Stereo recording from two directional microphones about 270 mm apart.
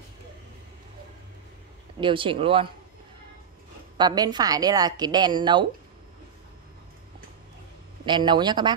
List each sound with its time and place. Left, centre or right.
2.0 s speech: centre
4.0 s a woman's voice: centre
8.0 s a woman's voice: centre